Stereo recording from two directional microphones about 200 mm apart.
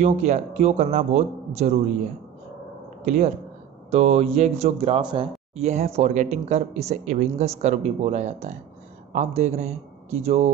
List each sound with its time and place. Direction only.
0.0 s speech: 35° right (ahead or behind)
3.9 s speech: 35° right (ahead or behind)